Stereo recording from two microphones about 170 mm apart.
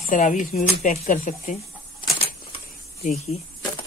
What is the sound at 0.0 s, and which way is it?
Speech, 45° left (ahead or behind).